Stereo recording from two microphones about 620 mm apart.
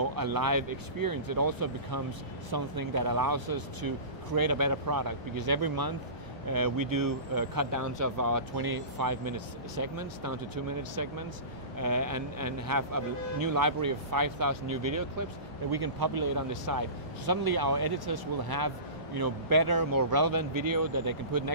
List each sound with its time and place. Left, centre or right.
0.0 s speech: right